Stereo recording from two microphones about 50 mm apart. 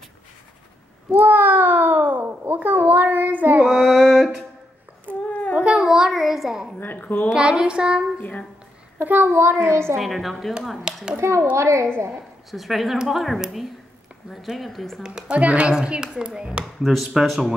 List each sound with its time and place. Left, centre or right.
1.1 s a sound: right
3.6 s a sound: centre
5.1 s child singing: right
5.5 s a sound: centre
6.8 s a sound: left
7.2 s speech: centre
8.2 s a woman's voice: left
9.0 s a child's voice: right
9.9 s speech: centre
11.1 s a woman's voice: right
12.4 s speech: centre
15.0 s a woman's voice: centre
16.8 s speech: centre